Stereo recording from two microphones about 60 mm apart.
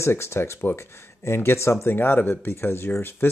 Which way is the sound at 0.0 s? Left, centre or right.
Left.